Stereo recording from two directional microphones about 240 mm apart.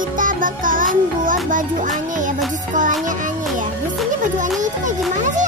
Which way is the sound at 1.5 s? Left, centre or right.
Right.